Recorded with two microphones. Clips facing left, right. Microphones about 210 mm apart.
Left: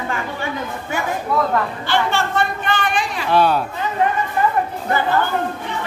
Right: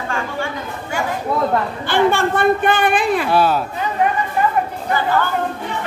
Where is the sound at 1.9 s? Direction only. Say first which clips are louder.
Right 7 dB; 50° right (ahead or behind).